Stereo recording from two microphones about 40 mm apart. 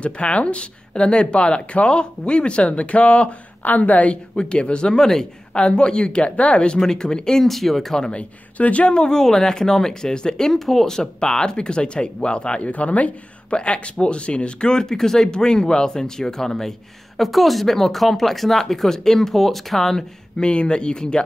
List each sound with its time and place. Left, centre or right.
0.0 s speech: left
3.6 s speech: left
6.8 s speech: centre
7.4 s speech: centre
8.1 s speech: left
8.9 s speech: centre
17.2 s speech: centre
20.3 s speech: left